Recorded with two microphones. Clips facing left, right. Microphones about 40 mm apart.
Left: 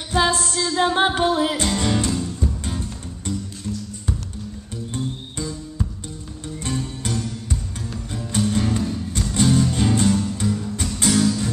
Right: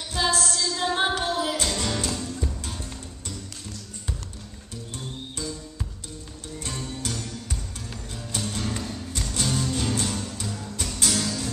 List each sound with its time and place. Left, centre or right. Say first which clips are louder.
0.1 s music: left 5 dB; left
7.0 s music: left 6 dB; centre
8.4 s music: left 9 dB; centre